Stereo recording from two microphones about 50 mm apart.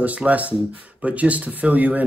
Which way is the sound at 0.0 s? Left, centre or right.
Right.